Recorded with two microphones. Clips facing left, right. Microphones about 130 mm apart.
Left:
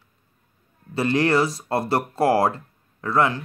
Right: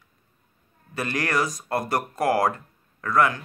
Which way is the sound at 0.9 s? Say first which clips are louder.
Left 6 dB; 25° left (ahead or behind).